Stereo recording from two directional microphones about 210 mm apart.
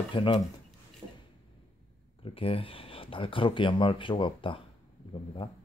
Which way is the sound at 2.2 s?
25° left (ahead or behind).